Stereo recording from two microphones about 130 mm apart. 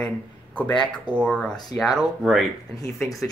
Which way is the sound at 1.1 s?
5° left (ahead or behind).